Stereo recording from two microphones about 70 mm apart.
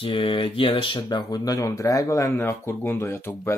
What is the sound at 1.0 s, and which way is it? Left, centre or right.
Speech, left.